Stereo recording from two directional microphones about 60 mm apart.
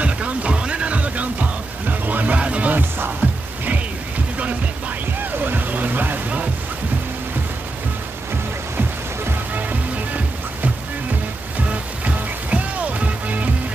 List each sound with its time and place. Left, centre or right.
0.0 s music: centre
5.2 s music: right
8.7 s music: right
11.7 s music: right